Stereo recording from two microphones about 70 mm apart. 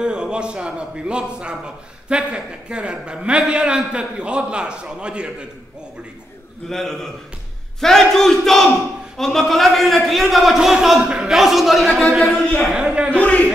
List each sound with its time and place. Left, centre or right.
0.0 s a man's voice: centre
6.7 s a man's voice: centre
12.7 s a man's voice: centre
13.2 s speech: centre